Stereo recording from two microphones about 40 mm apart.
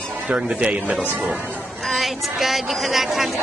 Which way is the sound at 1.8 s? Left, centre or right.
Centre.